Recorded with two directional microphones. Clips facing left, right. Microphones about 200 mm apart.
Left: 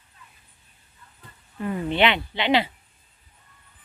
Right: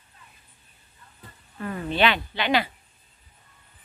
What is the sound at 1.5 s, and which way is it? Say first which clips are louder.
Speech: left 2 dB; 20° left (ahead or behind).